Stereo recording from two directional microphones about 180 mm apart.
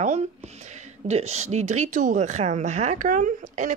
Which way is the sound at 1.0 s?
35° right (ahead or behind).